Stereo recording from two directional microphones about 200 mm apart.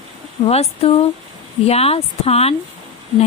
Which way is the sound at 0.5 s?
30° left (ahead or behind).